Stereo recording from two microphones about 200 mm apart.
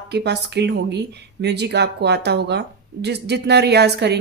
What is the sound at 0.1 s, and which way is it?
Speech, 55° right (ahead or behind).